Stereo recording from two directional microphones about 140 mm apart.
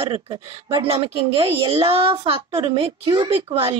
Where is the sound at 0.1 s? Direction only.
30° right (ahead or behind).